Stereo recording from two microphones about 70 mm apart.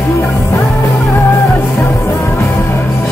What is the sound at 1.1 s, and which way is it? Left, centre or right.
Music, left.